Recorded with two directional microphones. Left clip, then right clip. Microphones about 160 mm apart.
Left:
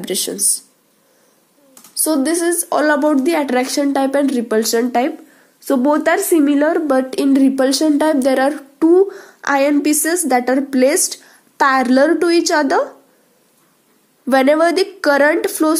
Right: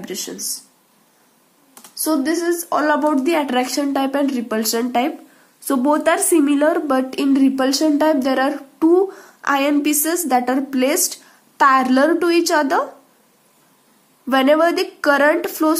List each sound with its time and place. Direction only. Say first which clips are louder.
0.0 s a woman's voice: left 7 dB; 40° left (ahead or behind)
2.0 s a woman's voice: left 2 dB; 35° left (ahead or behind)
14.3 s a woman's voice: left 2 dB; 30° left (ahead or behind)